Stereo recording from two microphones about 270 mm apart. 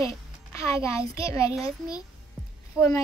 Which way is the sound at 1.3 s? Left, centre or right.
Centre.